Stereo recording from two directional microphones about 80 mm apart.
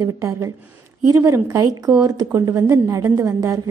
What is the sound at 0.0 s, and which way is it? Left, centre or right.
A woman's voice, right.